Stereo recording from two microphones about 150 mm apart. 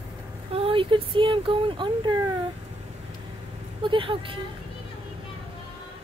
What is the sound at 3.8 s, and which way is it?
Speech, 35° right (ahead or behind).